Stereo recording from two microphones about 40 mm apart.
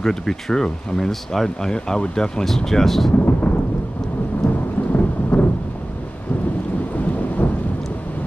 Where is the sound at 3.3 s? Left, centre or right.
Left.